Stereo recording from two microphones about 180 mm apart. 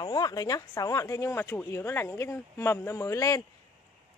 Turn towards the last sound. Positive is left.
turn(degrees=20)  # may be behind; listen again after turning